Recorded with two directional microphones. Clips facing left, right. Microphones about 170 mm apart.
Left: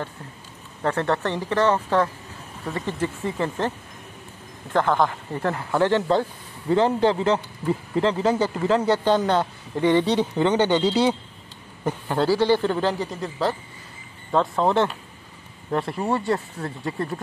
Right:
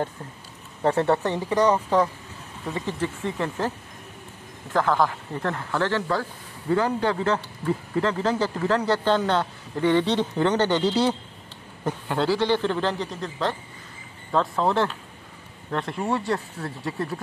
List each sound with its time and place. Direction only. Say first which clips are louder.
0.8 s speech: right 2 dB; 15° right (ahead or behind)
3.0 s speech: left 3 dB; 5° left (ahead or behind)
4.7 s speech: left 1 dB; centre (ahead or behind)
5.7 s speech: left 6 dB; 15° left (ahead or behind); by 17.2 s centre (ahead or behind)